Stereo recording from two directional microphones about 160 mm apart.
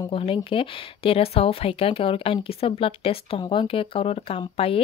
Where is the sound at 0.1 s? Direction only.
35° left (ahead or behind).